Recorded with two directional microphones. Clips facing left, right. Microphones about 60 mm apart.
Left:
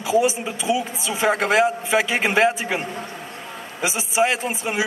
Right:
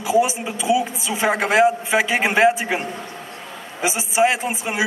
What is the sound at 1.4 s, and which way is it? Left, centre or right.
A man's voice, centre.